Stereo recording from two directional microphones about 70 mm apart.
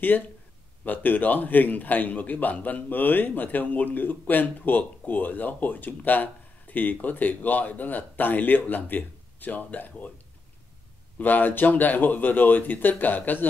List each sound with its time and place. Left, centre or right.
0.8 s a man's voice: left
11.1 s a man's voice: left